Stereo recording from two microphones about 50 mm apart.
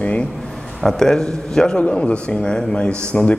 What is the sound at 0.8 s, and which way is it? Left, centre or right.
Speech, centre.